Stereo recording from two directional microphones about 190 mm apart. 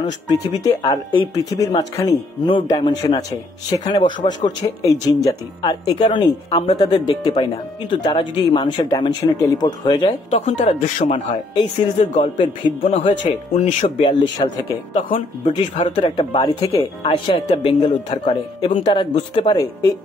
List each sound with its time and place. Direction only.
0.3 s speech: 20° left (ahead or behind)
10.4 s speech: 35° left (ahead or behind)
12.8 s speech: 40° left (ahead or behind); by 19.9 s 25° left (ahead or behind)